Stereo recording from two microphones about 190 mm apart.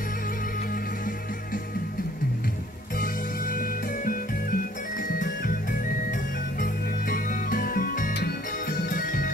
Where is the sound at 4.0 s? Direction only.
45° left (ahead or behind).